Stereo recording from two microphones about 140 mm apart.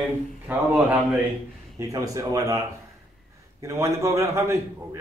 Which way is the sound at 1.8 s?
25° right (ahead or behind).